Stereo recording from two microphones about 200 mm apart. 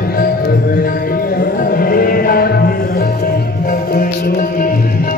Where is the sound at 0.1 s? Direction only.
50° left (ahead or behind).